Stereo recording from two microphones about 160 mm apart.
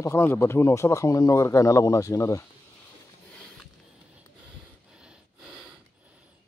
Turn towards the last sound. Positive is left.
turn(degrees=-5)  # may be behind; listen again after turning